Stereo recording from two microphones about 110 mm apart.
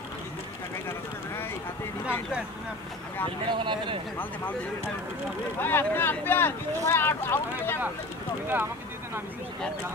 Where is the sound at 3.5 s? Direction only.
50° right (ahead or behind).